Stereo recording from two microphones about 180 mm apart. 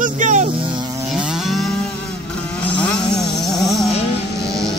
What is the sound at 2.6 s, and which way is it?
Vehicle, 5° left (ahead or behind).